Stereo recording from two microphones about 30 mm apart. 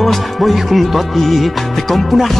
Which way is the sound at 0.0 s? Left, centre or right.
Centre.